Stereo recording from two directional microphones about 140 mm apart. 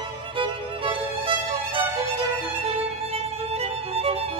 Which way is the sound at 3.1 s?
45° right (ahead or behind).